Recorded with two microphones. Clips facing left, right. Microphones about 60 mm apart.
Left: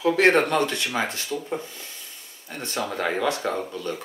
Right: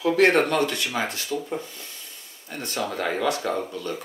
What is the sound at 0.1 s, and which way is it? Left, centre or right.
Speech, left.